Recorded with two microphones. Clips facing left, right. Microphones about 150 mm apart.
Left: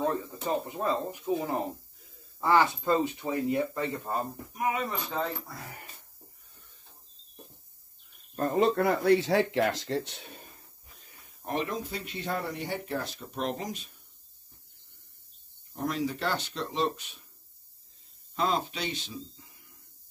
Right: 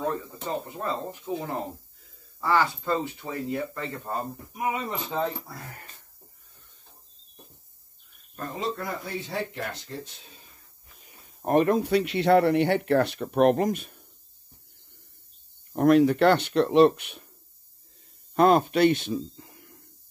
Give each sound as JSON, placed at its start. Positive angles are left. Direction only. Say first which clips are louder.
{"t": 0.0, "sound": "speech", "louder": "even", "side_deg": 15}
{"t": 4.6, "sound": "speech", "louder": "right 1 dB", "side_deg": -20}
{"t": 5.5, "sound": "speech", "louder": "right 1 dB", "side_deg": 0}
{"t": 8.4, "sound": "speech", "louder": "left 7 dB", "side_deg": 55}
{"t": 11.4, "sound": "speech", "louder": "right 11 dB", "side_deg": -55}
{"t": 15.7, "sound": "speech", "louder": "right 13 dB", "side_deg": -60}
{"t": 18.3, "sound": "speech", "louder": "right 10 dB", "side_deg": -60}